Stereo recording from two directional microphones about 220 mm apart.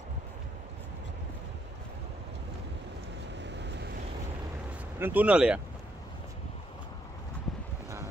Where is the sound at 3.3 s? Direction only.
50° right (ahead or behind).